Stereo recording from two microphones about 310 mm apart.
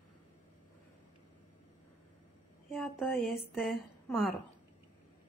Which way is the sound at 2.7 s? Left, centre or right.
Centre.